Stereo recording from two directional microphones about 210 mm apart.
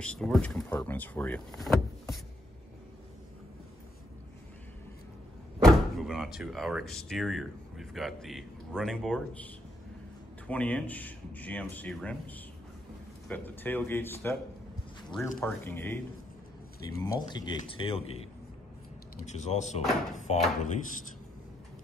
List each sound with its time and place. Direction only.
0.0 s speech: 5° left (ahead or behind)
5.6 s speech: centre (ahead or behind); by 18.2 s 30° left (ahead or behind)
19.2 s speech: 35° left (ahead or behind)